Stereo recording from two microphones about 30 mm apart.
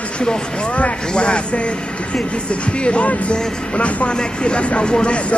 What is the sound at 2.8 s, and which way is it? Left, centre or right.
Music, left.